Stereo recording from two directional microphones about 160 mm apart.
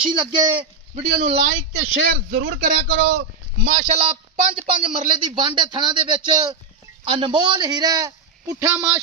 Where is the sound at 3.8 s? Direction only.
40° right (ahead or behind).